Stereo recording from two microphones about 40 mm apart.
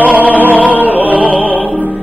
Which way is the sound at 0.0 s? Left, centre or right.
Right.